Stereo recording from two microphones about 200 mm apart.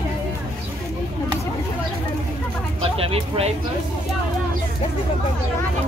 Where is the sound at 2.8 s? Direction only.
30° right (ahead or behind).